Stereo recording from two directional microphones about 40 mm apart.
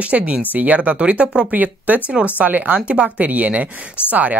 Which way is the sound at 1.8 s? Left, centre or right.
Right.